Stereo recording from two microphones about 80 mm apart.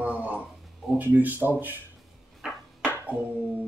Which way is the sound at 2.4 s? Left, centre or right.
Centre.